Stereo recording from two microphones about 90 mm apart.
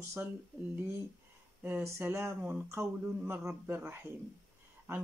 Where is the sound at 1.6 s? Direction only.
25° right (ahead or behind).